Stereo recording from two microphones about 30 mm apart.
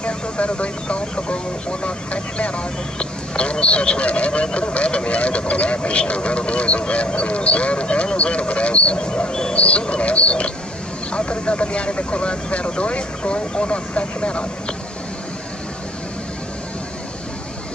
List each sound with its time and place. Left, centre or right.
0.0 s speech: left
8.9 s speech: left
9.5 s speech: left